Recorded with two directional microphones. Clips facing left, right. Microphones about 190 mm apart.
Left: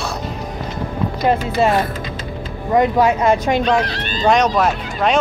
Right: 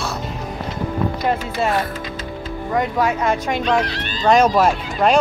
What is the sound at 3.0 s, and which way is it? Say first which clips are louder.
Speech: left 4 dB; 30° left (ahead or behind).